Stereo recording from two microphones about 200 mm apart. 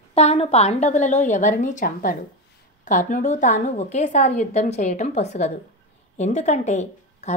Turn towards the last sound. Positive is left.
turn(degrees=35)  # may be behind; listen again after turning